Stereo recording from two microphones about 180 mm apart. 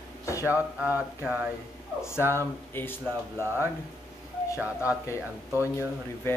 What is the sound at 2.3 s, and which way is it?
Speech, 10° left (ahead or behind).